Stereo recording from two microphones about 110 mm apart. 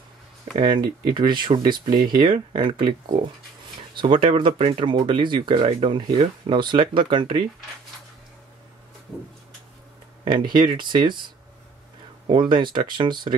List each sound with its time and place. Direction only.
0.6 s speech: 45° right (ahead or behind)
3.9 s speech: 45° right (ahead or behind)
10.2 s speech: 45° right (ahead or behind)
12.3 s speech: 45° right (ahead or behind)